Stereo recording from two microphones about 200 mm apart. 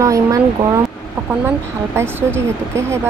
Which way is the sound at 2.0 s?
10° right (ahead or behind).